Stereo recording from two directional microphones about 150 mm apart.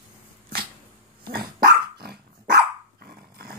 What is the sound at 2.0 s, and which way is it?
Dog, 90° right.